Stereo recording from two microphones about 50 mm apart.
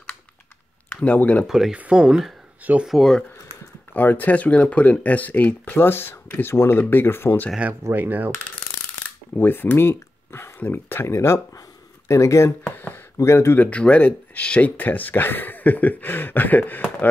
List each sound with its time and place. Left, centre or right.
0.8 s speech: left
1.9 s speech: centre
2.9 s speech: centre
3.9 s speech: left
7.9 s speech: right
9.4 s speech: left
11.1 s speech: left
12.6 s a sound: left
13.2 s speech: left
13.6 s speech: left